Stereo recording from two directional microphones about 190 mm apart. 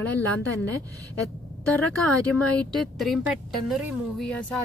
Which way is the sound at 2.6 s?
Centre (ahead or behind).